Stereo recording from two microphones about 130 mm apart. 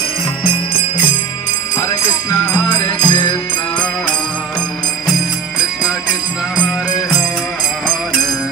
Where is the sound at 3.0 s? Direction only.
35° left (ahead or behind).